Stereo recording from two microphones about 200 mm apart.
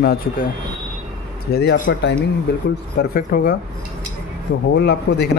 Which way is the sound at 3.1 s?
45° left (ahead or behind).